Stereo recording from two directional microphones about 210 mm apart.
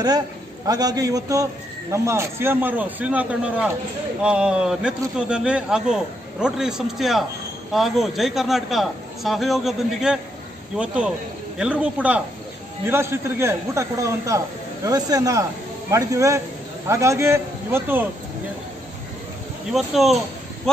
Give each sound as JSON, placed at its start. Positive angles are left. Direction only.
{"t": 0.7, "sound": "a man's voice", "side_deg": -15}
{"t": 19.7, "sound": "speech", "side_deg": 0}